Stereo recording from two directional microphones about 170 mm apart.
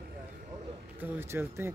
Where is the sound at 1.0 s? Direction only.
10° right (ahead or behind).